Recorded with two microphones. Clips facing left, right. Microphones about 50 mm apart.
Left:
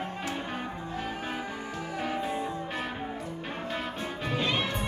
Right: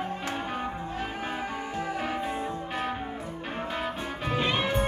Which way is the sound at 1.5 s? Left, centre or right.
Right.